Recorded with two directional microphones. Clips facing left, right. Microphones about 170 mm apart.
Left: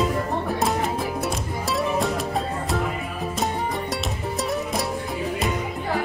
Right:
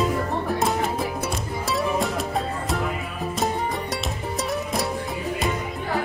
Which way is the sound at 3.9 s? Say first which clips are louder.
Left 1 dB; centre (ahead or behind).